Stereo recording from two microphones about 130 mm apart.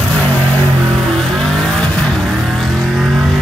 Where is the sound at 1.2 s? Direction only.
Centre (ahead or behind).